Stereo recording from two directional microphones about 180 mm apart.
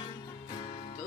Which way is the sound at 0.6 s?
40° left (ahead or behind).